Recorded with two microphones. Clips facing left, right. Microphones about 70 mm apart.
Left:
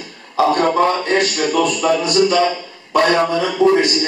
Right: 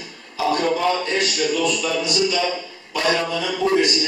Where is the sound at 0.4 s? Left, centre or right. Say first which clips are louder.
Left 6 dB; left.